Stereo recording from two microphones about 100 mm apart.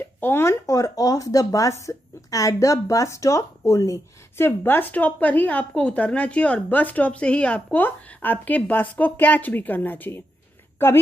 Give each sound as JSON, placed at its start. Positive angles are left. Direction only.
{"t": 0.2, "sound": "speech", "side_deg": 25}
{"t": 4.5, "sound": "a woman's voice", "side_deg": 20}